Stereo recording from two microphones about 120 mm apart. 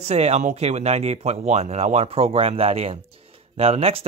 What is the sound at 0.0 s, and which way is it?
Speech, 65° right (ahead or behind).